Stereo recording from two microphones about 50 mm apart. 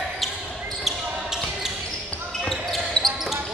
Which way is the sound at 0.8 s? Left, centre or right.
Centre.